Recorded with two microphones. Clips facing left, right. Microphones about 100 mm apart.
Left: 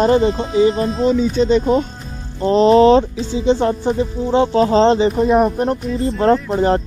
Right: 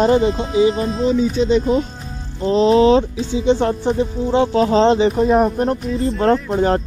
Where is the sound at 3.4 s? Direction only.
10° left (ahead or behind).